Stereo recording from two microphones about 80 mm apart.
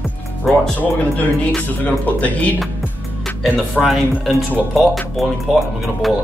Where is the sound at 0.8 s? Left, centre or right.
Left.